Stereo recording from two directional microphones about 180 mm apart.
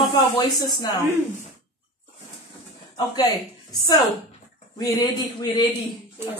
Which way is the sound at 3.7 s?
25° left (ahead or behind).